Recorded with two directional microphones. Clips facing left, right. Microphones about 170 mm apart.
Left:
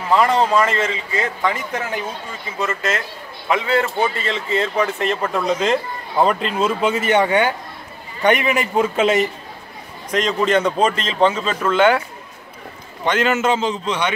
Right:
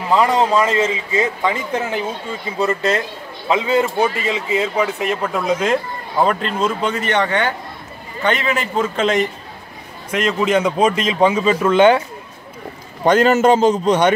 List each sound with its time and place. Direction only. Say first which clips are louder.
0.5 s a man's voice: right 2 dB; 10° right (ahead or behind)
1.5 s speech: right 3 dB; 25° right (ahead or behind)
3.4 s a man's voice: right 2 dB; 20° right (ahead or behind); by 9.3 s 5° left (ahead or behind)
10.1 s a man's voice: right 1 dB; 5° right (ahead or behind)
13.0 s a man's voice: right 6 dB; 40° right (ahead or behind)